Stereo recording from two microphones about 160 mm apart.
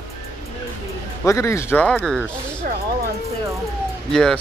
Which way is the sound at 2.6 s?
60° right (ahead or behind).